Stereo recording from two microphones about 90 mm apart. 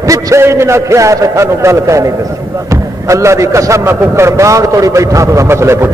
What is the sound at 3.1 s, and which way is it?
A man's voice, 35° right (ahead or behind).